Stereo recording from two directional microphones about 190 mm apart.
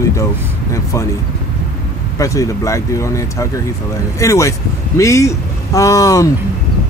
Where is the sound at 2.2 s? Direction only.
15° left (ahead or behind).